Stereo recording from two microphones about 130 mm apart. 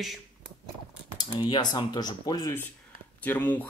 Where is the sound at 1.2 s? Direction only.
40° left (ahead or behind).